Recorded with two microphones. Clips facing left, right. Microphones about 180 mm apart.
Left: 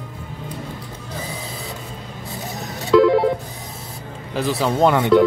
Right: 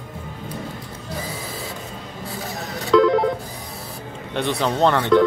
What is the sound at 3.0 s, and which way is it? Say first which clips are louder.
Telephone dialing: left 2 dB; 5° left (ahead or behind).